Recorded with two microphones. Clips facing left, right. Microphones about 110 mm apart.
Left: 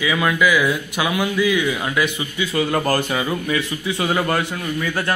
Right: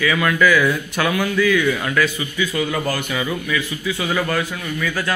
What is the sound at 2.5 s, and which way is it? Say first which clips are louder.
Speech: left 5 dB; 45° left (ahead or behind).